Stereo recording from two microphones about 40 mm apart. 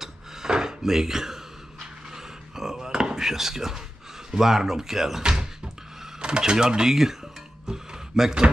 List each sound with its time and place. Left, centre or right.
0.0 s wood: centre
2.1 s a sound: centre
4.3 s speech: centre
6.2 s speech: right
7.6 s music: centre